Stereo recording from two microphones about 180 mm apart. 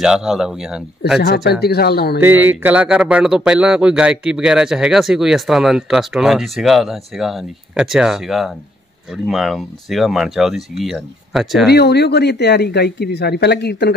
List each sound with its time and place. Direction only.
0.0 s speech: 5° right (ahead or behind)
1.2 s speech: 65° left (ahead or behind)
2.2 s speech: 10° right (ahead or behind)
11.7 s speech: 65° left (ahead or behind)